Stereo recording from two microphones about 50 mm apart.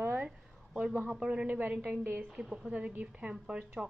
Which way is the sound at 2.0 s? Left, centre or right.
Right.